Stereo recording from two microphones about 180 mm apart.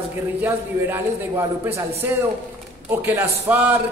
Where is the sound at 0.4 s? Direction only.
10° right (ahead or behind).